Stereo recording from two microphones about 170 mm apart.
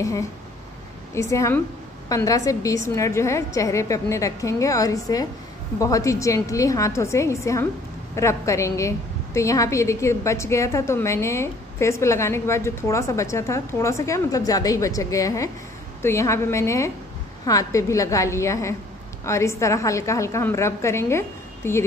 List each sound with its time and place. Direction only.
0.0 s a woman's voice: 20° left (ahead or behind)